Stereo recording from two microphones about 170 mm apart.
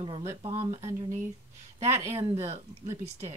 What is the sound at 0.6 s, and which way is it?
Speech, 35° right (ahead or behind).